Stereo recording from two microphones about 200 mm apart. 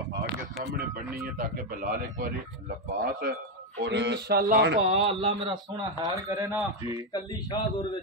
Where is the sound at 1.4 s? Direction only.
45° right (ahead or behind).